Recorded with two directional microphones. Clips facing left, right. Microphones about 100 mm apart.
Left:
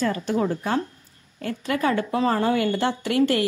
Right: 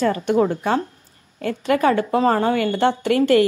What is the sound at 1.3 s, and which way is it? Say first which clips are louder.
A woman's voice: right 6 dB; 60° right (ahead or behind).